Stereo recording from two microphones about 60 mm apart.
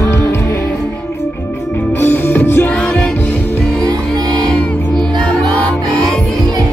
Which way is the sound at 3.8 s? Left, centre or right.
Right.